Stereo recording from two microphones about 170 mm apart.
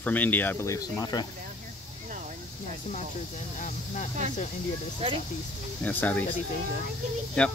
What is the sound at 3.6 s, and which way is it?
Speech, 45° left (ahead or behind).